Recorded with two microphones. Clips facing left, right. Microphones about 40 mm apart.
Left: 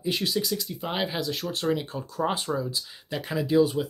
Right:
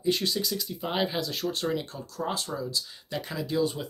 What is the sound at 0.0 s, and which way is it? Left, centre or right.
Speech, centre.